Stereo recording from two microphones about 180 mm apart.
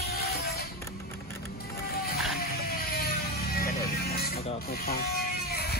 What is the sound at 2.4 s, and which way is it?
Music, 55° left (ahead or behind).